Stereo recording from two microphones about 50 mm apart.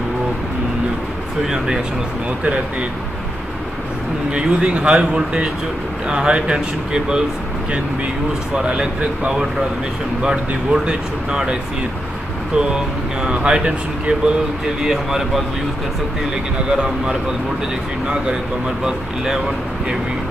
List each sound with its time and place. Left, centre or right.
4.3 s speech: centre
8.5 s speech: centre
12.5 s speech: centre
14.8 s speech: centre
16.7 s speech: centre
18.9 s speech: centre